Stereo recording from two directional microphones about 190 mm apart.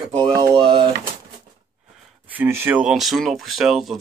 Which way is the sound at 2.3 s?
10° right (ahead or behind).